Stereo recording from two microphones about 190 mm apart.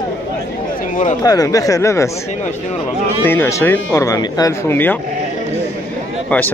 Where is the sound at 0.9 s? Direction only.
40° left (ahead or behind).